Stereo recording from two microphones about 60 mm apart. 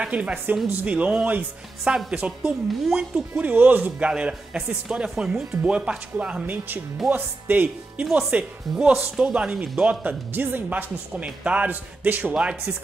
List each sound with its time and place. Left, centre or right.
0.0 s a woman's voice: centre
1.9 s a man's voice: centre
6.4 s speech: right
8.0 s a man's voice: centre
10.3 s speech: right